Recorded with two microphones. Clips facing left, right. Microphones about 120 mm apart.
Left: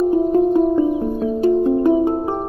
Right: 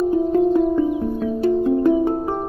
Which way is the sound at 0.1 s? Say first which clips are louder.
Left 2 dB; 25° left (ahead or behind).